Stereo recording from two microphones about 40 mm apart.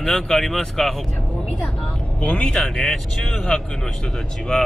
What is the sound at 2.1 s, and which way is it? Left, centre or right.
Speech, left.